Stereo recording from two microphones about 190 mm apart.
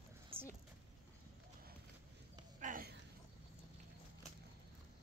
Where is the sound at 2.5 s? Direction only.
45° right (ahead or behind).